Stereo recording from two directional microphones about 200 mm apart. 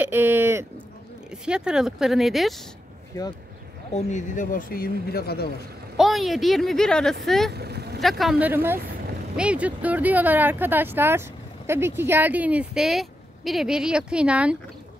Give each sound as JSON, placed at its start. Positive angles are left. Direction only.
{"t": 0.0, "sound": "a sound", "side_deg": -10}
{"t": 1.3, "sound": "speech", "side_deg": -5}
{"t": 3.9, "sound": "speech", "side_deg": 40}
{"t": 5.9, "sound": "speech", "side_deg": 0}
{"t": 7.5, "sound": "vehicle", "side_deg": -55}
{"t": 8.0, "sound": "speech", "side_deg": 0}